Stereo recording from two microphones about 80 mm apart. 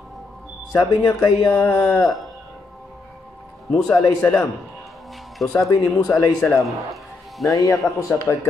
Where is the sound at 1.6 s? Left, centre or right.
Left.